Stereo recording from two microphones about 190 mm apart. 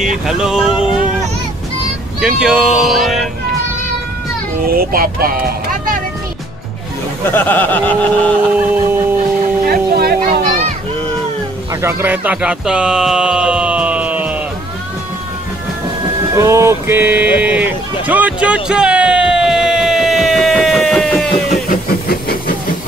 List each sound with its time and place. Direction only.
0.0 s speech: centre (ahead or behind)
2.1 s speech: 5° right (ahead or behind)
4.6 s speech: 50° right (ahead or behind)
7.2 s speech: 10° left (ahead or behind)
8.5 s a sound: 10° right (ahead or behind)
9.7 s a sound: 55° right (ahead or behind)
11.8 s music: 10° right (ahead or behind)
16.3 s a sound: 15° right (ahead or behind); by 21.3 s centre (ahead or behind)
21.6 s hiss: 50° left (ahead or behind)